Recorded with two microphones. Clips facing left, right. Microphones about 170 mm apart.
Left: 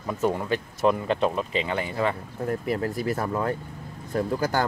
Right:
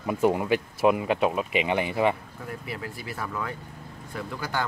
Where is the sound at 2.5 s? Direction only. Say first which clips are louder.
Left 9 dB; 45° left (ahead or behind).